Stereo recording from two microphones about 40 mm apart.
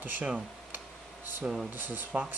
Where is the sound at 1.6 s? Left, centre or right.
Right.